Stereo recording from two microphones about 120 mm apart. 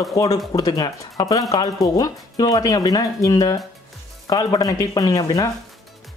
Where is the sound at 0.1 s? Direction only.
30° left (ahead or behind).